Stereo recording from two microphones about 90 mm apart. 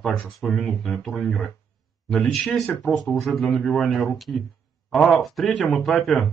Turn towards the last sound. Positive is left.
turn(degrees=5)  # may be behind; listen again after turning